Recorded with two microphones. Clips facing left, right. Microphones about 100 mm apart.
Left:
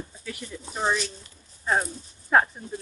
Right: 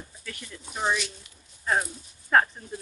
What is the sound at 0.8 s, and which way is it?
Speech, 35° left (ahead or behind).